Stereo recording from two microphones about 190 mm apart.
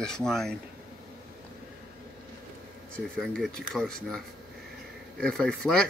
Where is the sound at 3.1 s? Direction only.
Centre (ahead or behind).